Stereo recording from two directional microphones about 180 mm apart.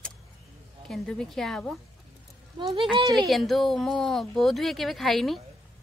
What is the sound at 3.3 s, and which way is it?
Speech, centre (ahead or behind).